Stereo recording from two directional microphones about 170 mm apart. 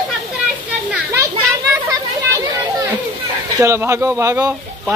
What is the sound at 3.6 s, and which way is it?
Speech, 15° right (ahead or behind).